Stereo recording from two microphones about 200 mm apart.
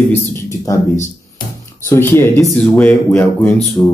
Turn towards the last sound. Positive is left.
turn(degrees=15)  # may be behind; listen again after turning